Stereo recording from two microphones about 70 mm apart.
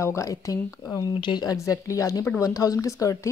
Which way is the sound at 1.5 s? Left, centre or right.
Left.